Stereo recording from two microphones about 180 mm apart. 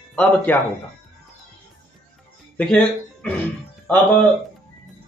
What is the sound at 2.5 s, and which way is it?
Speech, 5° left (ahead or behind).